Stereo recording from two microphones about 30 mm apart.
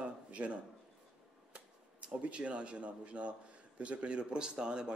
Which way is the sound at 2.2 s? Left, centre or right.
Right.